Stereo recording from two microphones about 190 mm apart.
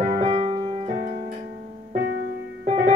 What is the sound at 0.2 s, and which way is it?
Keyboard, 30° right (ahead or behind).